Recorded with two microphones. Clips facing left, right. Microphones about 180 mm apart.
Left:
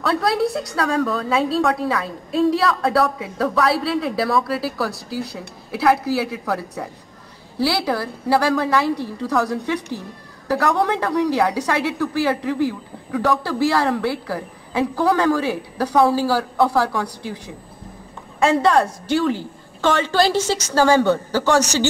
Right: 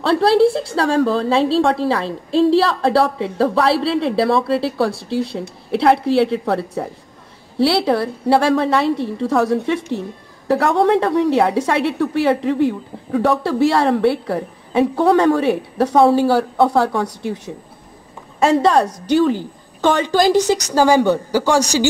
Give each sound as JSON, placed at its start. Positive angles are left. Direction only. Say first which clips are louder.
{"t": 0.0, "sound": "a woman's voice", "louder": "right 7 dB", "side_deg": -30}
{"t": 18.4, "sound": "a woman's voice", "louder": "right 2 dB", "side_deg": -20}